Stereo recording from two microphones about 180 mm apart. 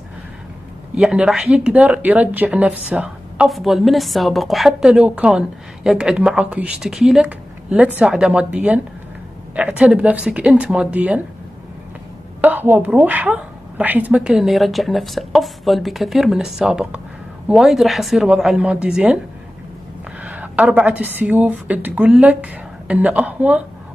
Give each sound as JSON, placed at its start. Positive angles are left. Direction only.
{"t": 0.9, "sound": "a woman's voice", "side_deg": -5}
{"t": 12.4, "sound": "a woman's voice", "side_deg": -10}
{"t": 20.2, "sound": "a woman's voice", "side_deg": -10}